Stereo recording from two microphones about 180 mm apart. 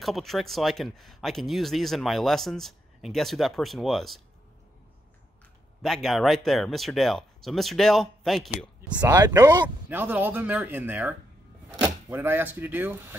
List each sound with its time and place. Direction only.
0.0 s speech: centre (ahead or behind)
5.8 s speech: centre (ahead or behind)
9.0 s speech: 20° right (ahead or behind)
9.8 s speech: 10° right (ahead or behind)